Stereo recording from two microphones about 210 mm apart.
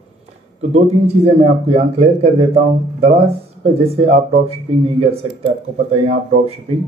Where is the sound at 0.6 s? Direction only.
30° right (ahead or behind).